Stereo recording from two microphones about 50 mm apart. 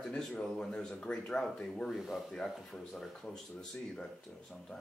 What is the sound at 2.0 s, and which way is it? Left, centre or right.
Speech, centre.